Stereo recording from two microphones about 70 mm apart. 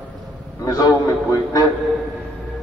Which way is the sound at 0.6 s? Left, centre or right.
Left.